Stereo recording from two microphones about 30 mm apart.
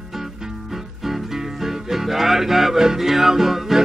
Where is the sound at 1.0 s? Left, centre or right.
Centre.